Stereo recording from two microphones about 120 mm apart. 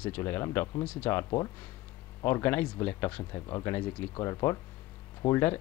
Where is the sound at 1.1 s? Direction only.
25° left (ahead or behind).